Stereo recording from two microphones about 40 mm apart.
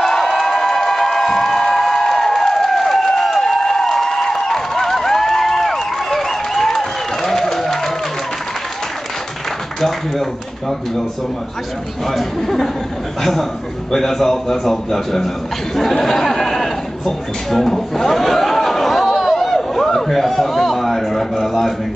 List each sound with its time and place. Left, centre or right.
0.0 s music: centre
9.8 s a man's voice: centre
12.1 s a man's voice: centre
15.9 s a sound: centre
19.5 s a man's voice: centre